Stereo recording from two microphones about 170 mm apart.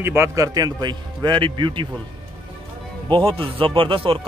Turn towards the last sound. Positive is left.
turn(degrees=-30)  # may be behind; listen again after turning